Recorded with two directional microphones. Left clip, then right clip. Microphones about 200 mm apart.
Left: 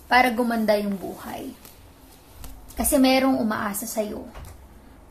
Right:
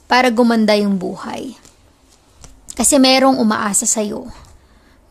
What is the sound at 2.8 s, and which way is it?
Speech, 45° right (ahead or behind).